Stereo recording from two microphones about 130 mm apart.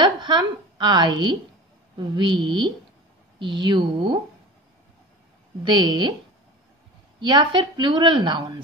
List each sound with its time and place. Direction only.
0.0 s a woman's voice: 35° right (ahead or behind)
5.6 s a woman's voice: 35° right (ahead or behind)
7.2 s a woman's voice: 35° right (ahead or behind)